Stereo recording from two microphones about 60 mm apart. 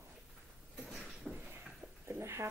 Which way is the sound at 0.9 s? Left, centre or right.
Centre.